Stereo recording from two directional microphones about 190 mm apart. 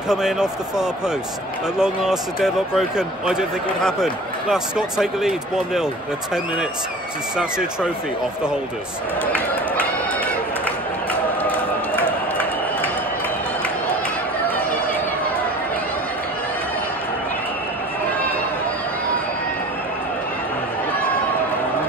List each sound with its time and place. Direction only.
0.1 s speech: 5° right (ahead or behind)
7.3 s speech: 5° right (ahead or behind)